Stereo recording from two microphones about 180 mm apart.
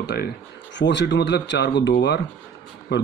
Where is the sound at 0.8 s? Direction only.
75° left (ahead or behind).